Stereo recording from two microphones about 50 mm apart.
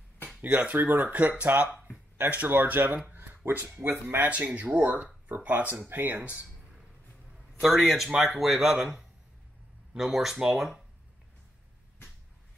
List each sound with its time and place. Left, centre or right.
0.4 s speech: right
4.3 s speech: right
6.2 s speech: right
7.6 s speech: centre